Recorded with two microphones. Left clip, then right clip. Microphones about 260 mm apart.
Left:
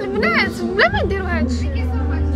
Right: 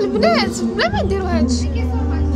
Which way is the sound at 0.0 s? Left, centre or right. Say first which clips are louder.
Right 2 dB; right.